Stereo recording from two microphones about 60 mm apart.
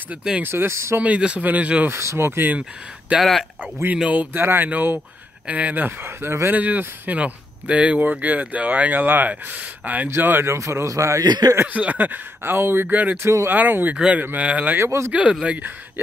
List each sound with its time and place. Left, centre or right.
0.4 s a man's voice: right
1.0 s speech: right
1.9 s a man's voice: right
3.2 s speech: centre
4.0 s speech: right
6.5 s speech: right
10.2 s a man's voice: right
11.6 s speech: right
12.9 s speech: right
13.9 s speech: centre
14.9 s a man's voice: right